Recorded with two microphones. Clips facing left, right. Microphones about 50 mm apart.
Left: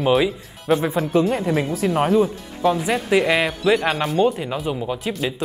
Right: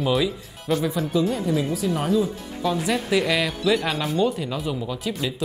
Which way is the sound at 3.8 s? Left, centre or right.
Centre.